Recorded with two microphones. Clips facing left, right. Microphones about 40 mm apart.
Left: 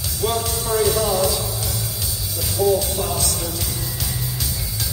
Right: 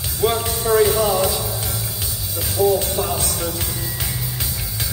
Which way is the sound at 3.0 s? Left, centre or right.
Right.